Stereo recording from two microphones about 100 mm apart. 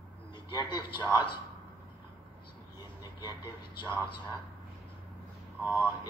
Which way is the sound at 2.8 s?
45° left (ahead or behind).